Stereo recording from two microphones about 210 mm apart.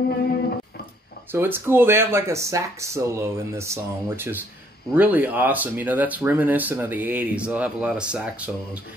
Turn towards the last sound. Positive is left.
turn(degrees=-5)  # may be behind; listen again after turning